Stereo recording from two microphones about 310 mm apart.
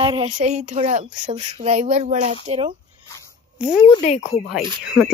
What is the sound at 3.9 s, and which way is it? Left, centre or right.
Speech, left.